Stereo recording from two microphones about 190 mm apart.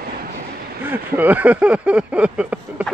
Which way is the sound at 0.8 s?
10° right (ahead or behind).